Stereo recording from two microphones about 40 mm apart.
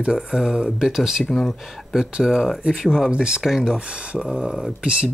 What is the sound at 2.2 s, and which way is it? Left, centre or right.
Speech, centre.